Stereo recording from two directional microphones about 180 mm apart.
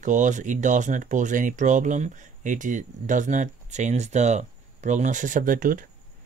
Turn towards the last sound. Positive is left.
turn(degrees=-50)  # may be behind; listen again after turning